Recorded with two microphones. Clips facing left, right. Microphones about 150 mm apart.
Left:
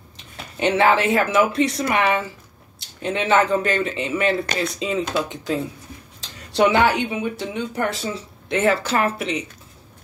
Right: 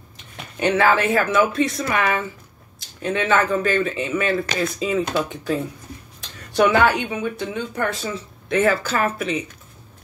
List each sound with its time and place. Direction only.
0.6 s speech: 25° left (ahead or behind)